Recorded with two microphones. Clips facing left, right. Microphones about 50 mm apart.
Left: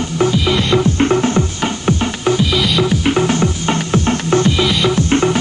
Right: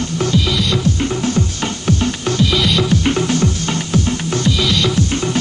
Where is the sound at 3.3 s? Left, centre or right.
Left.